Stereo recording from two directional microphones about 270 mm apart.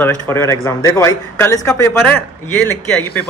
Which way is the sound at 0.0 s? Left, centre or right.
Centre.